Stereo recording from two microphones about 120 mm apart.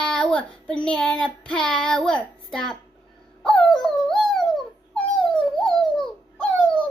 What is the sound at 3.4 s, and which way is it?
Dog, 5° left (ahead or behind).